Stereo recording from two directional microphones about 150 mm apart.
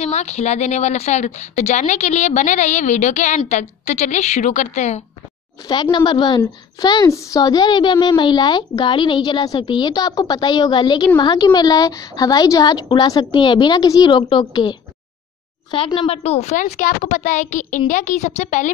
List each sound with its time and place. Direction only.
0.0 s a woman's voice: 45° left (ahead or behind)
5.7 s a woman's voice: 30° left (ahead or behind); by 18.7 s 50° left (ahead or behind)